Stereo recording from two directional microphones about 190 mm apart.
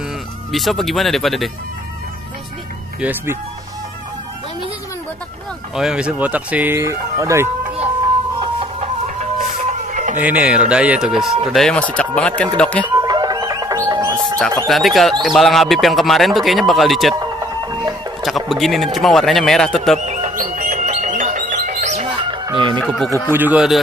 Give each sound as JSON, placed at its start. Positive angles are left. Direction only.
{"t": 0.5, "sound": "speech", "side_deg": 0}
{"t": 3.0, "sound": "speech", "side_deg": -10}
{"t": 5.8, "sound": "speech", "side_deg": -5}
{"t": 9.0, "sound": "music", "side_deg": -40}
{"t": 10.1, "sound": "speech", "side_deg": -10}
{"t": 12.9, "sound": "music", "side_deg": -20}
{"t": 14.7, "sound": "speech", "side_deg": 0}
{"t": 17.1, "sound": "a sound", "side_deg": -20}
{"t": 18.5, "sound": "speech", "side_deg": 0}
{"t": 20.1, "sound": "music", "side_deg": -35}
{"t": 22.8, "sound": "speech", "side_deg": 0}
{"t": 23.2, "sound": "speech", "side_deg": -10}